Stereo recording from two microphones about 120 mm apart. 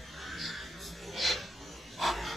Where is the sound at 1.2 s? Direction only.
Centre (ahead or behind).